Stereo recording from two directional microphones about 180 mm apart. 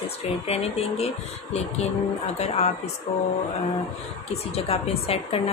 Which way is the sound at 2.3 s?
35° left (ahead or behind).